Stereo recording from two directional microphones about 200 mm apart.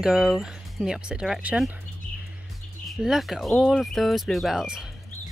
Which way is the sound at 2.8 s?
Centre (ahead or behind).